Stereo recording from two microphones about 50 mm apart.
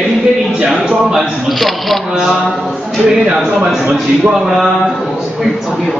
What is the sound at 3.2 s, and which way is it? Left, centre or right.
A man's voice, centre.